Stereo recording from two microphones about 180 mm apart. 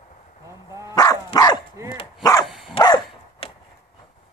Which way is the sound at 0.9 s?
20° left (ahead or behind).